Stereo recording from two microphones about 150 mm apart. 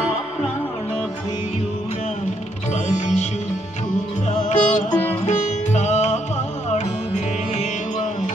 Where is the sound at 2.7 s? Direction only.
50° left (ahead or behind).